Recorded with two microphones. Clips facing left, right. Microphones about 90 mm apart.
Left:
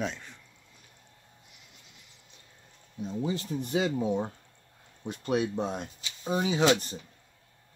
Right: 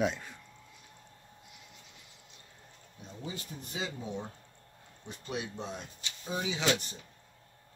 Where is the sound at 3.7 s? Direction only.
65° left (ahead or behind); by 6.6 s 50° left (ahead or behind).